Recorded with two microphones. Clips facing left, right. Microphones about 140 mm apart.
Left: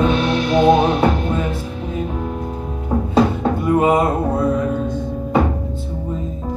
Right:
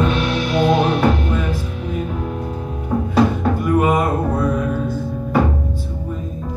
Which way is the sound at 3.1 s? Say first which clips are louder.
Even; 25° left (ahead or behind).